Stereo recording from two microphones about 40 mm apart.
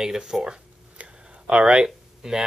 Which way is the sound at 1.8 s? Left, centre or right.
Centre.